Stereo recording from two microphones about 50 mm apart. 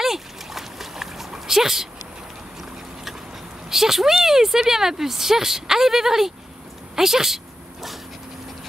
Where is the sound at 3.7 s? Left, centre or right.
Centre.